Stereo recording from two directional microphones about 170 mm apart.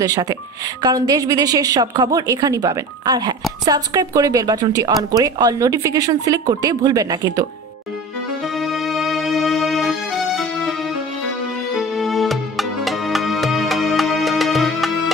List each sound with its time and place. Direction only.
0.0 s speech: 20° right (ahead or behind)
8.5 s music: centre (ahead or behind)
11.7 s music: centre (ahead or behind)